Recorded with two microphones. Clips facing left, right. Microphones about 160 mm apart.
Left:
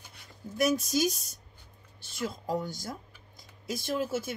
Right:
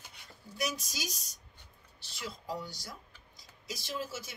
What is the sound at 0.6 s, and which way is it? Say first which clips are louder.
Speech: left 11 dB; 50° left (ahead or behind).